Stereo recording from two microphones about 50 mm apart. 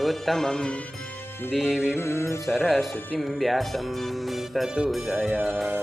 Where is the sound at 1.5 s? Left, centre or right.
Centre.